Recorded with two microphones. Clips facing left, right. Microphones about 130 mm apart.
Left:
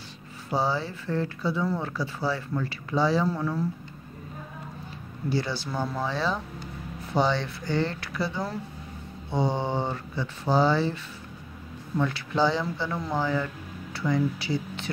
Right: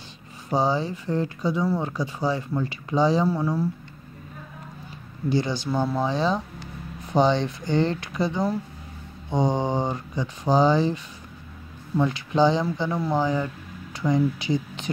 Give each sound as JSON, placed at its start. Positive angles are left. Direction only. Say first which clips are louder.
{"t": 0.6, "sound": "speech", "louder": "right 4 dB", "side_deg": -20}
{"t": 5.3, "sound": "speech", "louder": "right 5 dB", "side_deg": -20}
{"t": 12.0, "sound": "speech", "louder": "right 4 dB", "side_deg": -20}